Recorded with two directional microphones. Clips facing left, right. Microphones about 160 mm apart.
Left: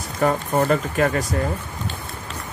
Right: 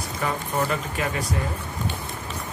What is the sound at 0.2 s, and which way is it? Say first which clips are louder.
Speech: left 7 dB; 45° left (ahead or behind).